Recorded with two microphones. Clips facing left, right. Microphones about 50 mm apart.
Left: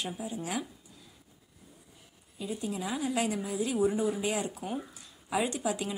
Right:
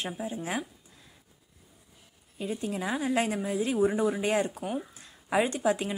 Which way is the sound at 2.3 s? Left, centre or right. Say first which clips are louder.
Right 3 dB; right.